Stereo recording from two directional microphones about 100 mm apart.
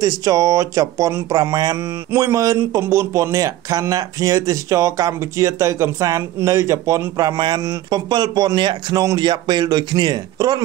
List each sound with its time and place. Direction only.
0.0 s a man's voice: 35° right (ahead or behind)